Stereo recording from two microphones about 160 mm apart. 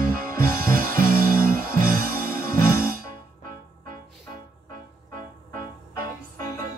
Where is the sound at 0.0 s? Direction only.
65° right (ahead or behind).